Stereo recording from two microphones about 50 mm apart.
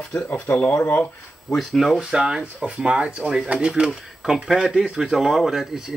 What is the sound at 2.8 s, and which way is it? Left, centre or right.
Speech, centre.